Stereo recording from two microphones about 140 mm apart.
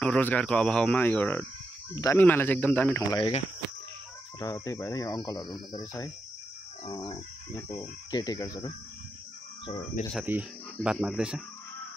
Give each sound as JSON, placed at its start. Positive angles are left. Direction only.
{"t": 0.0, "sound": "speech", "side_deg": 10}
{"t": 3.2, "sound": "speech", "side_deg": 45}
{"t": 4.4, "sound": "speech", "side_deg": 25}
{"t": 10.2, "sound": "speech", "side_deg": -10}